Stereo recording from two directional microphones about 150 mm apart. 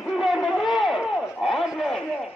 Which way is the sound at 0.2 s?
Centre (ahead or behind).